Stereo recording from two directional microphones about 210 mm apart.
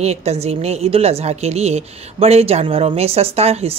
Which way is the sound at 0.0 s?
30° right (ahead or behind).